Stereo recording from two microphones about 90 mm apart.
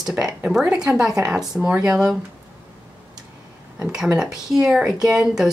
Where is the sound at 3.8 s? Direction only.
10° right (ahead or behind).